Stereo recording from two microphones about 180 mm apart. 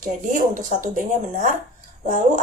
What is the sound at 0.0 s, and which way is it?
A woman's voice, 45° right (ahead or behind).